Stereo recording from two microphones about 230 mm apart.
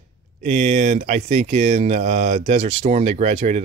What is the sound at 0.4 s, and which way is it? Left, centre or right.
Speech, right.